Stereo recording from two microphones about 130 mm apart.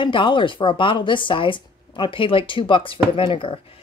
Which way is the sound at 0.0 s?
40° left (ahead or behind).